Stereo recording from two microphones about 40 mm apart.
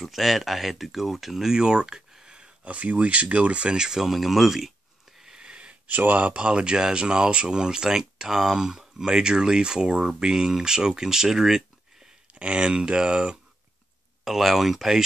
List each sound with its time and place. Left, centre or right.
0.0 s speech: centre; by 2.7 s right
2.7 s speech: right
3.7 s speech: centre
5.2 s sniff: right
5.9 s speech: right
6.3 s speech: right
12.4 s speech: right
14.2 s speech: centre